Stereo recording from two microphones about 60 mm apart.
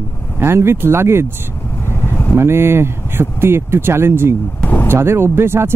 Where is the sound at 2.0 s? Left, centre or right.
Left.